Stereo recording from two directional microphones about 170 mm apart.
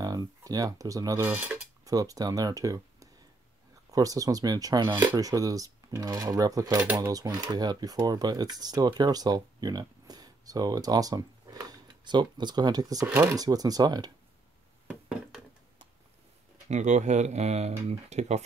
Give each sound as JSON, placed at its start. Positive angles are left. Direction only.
{"t": 0.0, "sound": "speech", "side_deg": -20}
{"t": 6.8, "sound": "speech", "side_deg": -10}
{"t": 7.1, "sound": "speech", "side_deg": -20}
{"t": 14.9, "sound": "a sound", "side_deg": -5}
{"t": 16.6, "sound": "speech", "side_deg": -45}